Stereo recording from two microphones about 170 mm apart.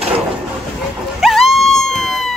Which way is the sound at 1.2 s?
Centre (ahead or behind).